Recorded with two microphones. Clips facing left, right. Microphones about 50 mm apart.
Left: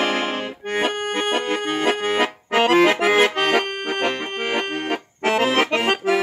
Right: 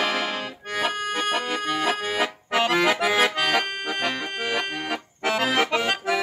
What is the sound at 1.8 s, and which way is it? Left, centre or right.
Accordion, left.